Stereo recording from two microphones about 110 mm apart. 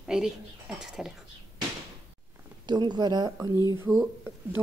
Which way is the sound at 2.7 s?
40° right (ahead or behind).